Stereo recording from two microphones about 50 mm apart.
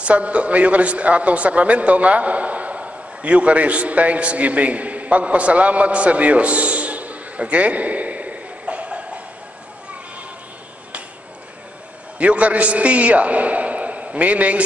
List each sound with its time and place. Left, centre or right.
0.0 s a man's voice: right
12.2 s a man's voice: right